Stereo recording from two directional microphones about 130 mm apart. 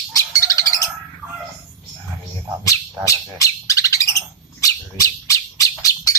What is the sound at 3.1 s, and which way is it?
Bird, 25° left (ahead or behind).